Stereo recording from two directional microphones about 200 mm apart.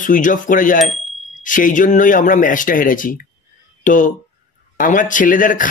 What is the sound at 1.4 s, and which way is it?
A man's voice, 40° left (ahead or behind).